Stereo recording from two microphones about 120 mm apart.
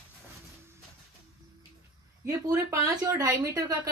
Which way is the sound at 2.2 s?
25° right (ahead or behind).